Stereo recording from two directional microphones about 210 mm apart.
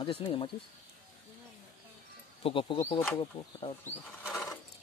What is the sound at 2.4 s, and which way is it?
Speech, 25° left (ahead or behind).